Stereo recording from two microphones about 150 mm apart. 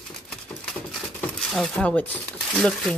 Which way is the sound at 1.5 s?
5° left (ahead or behind).